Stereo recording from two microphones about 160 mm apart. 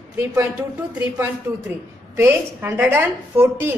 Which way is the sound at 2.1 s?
15° right (ahead or behind).